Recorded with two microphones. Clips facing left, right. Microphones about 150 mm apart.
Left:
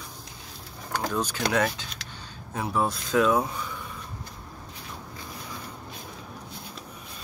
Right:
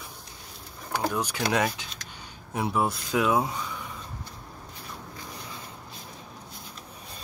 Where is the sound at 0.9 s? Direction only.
10° right (ahead or behind).